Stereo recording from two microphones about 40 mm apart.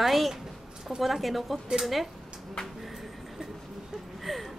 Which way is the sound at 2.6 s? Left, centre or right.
Left.